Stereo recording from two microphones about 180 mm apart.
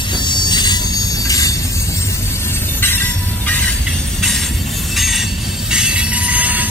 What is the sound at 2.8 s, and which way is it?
Train, 10° left (ahead or behind).